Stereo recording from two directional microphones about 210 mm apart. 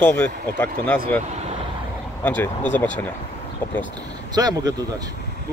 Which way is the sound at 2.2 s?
10° left (ahead or behind).